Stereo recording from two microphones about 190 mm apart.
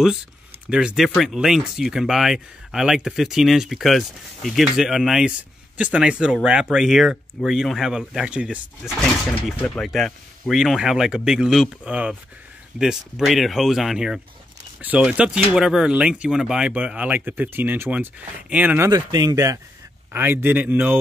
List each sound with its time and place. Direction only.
0.7 s speech: 5° right (ahead or behind)
9.3 s speech: 5° left (ahead or behind)
18.9 s speech: 20° right (ahead or behind)